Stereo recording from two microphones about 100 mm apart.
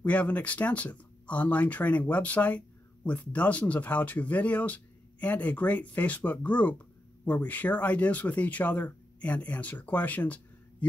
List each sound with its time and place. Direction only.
0.0 s speech: 15° left (ahead or behind)